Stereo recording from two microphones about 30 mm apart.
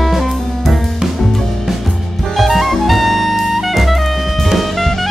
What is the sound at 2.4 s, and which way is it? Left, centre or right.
Jazz, centre.